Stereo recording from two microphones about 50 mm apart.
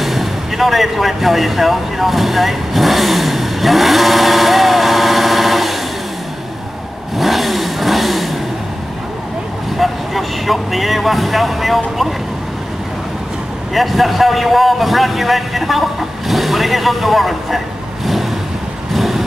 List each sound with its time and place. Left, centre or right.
0.0 s vehicle: centre
7.2 s vehicle: centre
9.8 s speech: centre
13.7 s a man's voice: centre
18.9 s vehicle: centre